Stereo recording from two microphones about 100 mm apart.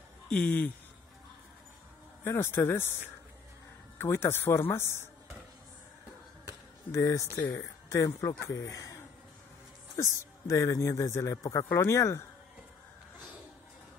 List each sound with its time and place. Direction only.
0.3 s speech: 10° left (ahead or behind)
2.2 s speech: 25° left (ahead or behind)
4.0 s speech: 25° left (ahead or behind)
6.9 s speech: 35° left (ahead or behind)